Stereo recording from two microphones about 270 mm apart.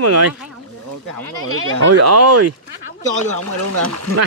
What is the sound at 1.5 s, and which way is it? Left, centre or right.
Speech, right.